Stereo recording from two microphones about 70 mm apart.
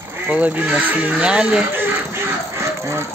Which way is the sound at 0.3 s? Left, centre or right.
Right.